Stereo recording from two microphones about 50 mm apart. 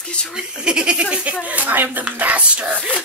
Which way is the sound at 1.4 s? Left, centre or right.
Right.